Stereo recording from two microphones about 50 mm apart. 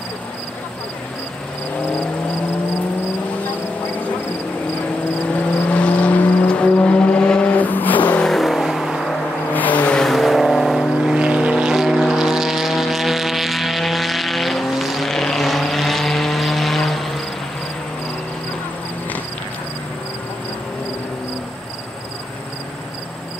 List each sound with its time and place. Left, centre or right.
5.4 s vehicle: left
7.5 s vehicle: left
8.2 s vehicle: centre
9.5 s vehicle: left
9.9 s vehicle: centre
11.1 s vehicle: centre
11.7 s vehicle: centre